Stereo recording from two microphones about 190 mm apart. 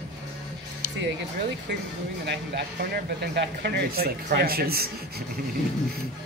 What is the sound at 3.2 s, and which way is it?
Speech, 60° right (ahead or behind).